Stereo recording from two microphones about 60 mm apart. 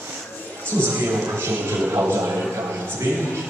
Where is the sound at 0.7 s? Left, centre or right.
Right.